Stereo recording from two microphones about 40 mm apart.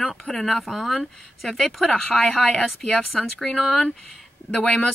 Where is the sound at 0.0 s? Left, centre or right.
Centre.